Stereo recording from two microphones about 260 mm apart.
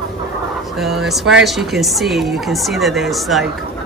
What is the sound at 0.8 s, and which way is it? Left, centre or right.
Speech, centre.